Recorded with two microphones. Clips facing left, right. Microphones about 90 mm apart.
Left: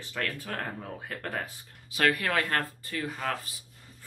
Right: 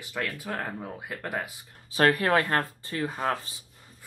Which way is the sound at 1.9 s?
35° right (ahead or behind).